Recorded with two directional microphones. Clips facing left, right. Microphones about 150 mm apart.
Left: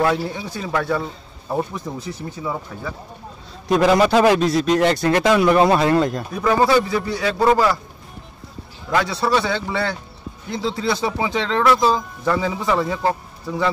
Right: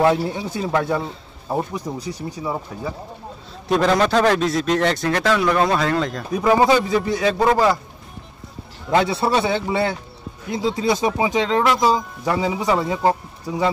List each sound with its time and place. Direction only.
0.0 s a man's voice: 25° right (ahead or behind)
3.6 s a man's voice: 5° left (ahead or behind)
5.1 s speech: 15° left (ahead or behind)
6.4 s a man's voice: 15° right (ahead or behind)
8.9 s a man's voice: 25° right (ahead or behind)